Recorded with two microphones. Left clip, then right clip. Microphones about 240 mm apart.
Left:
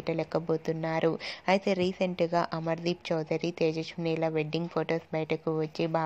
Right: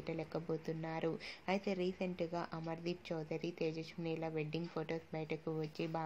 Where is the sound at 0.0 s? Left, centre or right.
Left.